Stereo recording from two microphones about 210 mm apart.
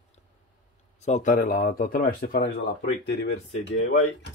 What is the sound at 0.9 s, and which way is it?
Speech, 35° left (ahead or behind).